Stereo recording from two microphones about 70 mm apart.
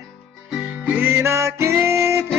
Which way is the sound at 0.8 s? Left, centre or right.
Right.